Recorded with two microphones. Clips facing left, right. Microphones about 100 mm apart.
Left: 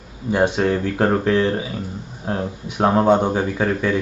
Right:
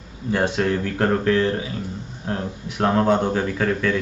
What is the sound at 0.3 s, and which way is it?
Speech, 15° left (ahead or behind).